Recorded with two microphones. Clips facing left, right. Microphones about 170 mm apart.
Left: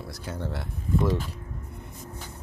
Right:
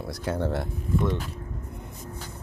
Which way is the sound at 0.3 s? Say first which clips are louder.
Right 7 dB; 55° right (ahead or behind).